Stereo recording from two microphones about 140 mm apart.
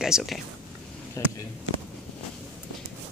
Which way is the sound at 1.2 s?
20° left (ahead or behind).